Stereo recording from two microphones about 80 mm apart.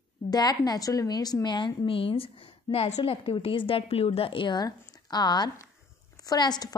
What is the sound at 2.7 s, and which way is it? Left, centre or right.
Speech, left.